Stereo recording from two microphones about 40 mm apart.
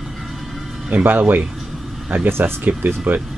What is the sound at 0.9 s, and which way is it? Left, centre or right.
Speech, right.